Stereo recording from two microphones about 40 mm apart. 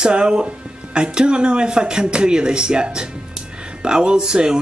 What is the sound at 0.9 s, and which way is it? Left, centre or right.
Speech, right.